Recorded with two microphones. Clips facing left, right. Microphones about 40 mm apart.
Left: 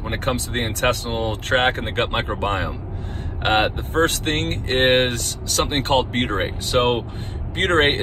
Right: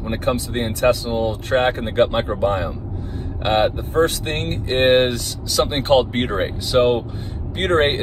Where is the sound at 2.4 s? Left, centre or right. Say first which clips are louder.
Right 3 dB; left.